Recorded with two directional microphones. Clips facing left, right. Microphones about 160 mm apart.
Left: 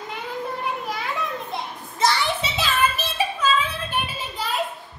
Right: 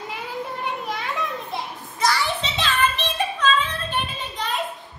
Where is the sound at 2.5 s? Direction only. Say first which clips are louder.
Even; 5° left (ahead or behind).